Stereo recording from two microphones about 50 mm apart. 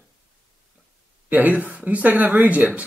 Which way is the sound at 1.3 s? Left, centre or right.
Right.